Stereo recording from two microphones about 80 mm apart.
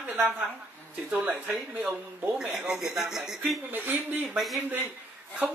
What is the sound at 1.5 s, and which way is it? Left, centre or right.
Speech, centre.